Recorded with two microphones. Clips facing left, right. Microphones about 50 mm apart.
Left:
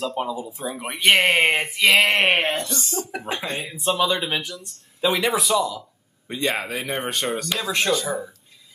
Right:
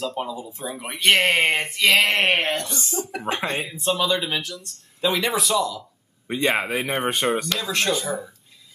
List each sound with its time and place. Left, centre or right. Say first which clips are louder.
0.0 s speech: left 2 dB; centre
2.6 s speech: even; centre
3.7 s speech: left 3 dB; centre
6.2 s a man's voice: right 2 dB; centre
6.7 s speech: right 3 dB; centre
7.4 s speech: left 1 dB; centre